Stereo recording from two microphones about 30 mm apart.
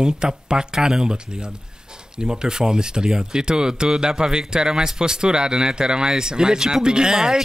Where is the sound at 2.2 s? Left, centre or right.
Right.